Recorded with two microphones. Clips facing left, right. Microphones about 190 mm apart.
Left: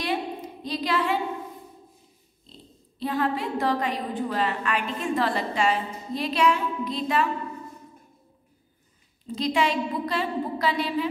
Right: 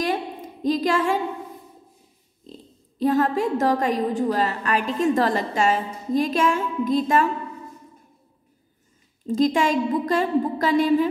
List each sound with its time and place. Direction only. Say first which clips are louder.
0.0 s a sound: right 3 dB; 45° right (ahead or behind)
3.0 s a woman's voice: right 6 dB; 45° right (ahead or behind)
9.3 s a woman's voice: right 5 dB; 45° right (ahead or behind)